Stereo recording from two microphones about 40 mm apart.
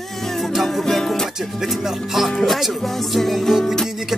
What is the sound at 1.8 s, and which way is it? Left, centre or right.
Music, centre.